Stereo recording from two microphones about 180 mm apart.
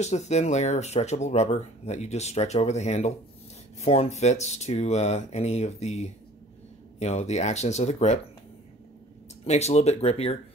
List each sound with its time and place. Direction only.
0.0 s speech: 40° left (ahead or behind)
9.4 s speech: 35° left (ahead or behind)